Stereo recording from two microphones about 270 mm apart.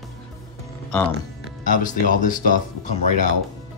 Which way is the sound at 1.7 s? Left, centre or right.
Left.